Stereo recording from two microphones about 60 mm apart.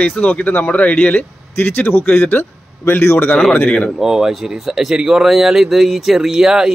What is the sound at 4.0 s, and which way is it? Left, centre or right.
A man's voice, centre.